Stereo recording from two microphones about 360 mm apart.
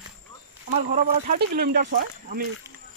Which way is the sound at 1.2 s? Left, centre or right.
Right.